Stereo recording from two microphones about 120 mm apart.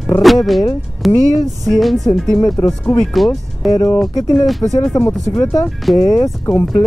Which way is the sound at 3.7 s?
30° left (ahead or behind).